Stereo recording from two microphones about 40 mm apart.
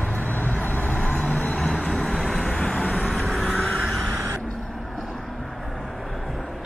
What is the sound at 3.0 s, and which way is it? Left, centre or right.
Vehicle, centre.